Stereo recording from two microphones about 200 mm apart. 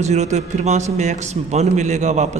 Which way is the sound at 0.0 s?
35° right (ahead or behind).